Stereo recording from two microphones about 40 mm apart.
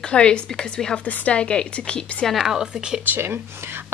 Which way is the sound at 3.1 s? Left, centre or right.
Right.